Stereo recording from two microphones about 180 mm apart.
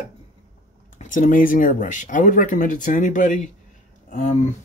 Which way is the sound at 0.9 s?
45° left (ahead or behind).